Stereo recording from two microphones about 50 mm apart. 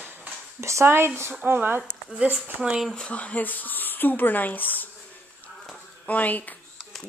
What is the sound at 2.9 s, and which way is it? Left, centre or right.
Speech, centre.